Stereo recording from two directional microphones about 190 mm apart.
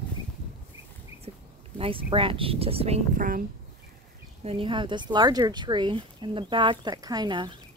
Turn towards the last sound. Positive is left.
turn(degrees=-25)  # may be behind; listen again after turning